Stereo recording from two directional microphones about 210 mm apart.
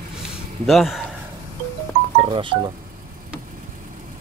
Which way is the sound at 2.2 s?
25° right (ahead or behind).